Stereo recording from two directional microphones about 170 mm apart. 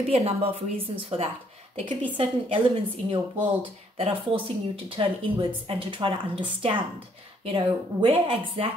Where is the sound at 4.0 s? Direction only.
30° right (ahead or behind).